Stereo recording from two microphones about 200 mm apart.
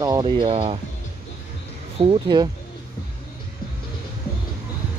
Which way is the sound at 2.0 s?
25° right (ahead or behind).